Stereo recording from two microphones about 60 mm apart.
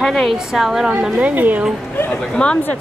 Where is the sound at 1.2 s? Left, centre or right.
Right.